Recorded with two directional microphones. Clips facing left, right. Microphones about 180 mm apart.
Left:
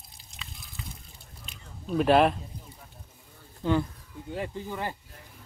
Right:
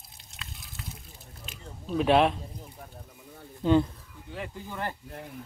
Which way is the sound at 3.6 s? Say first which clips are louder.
Right 4 dB; 20° right (ahead or behind).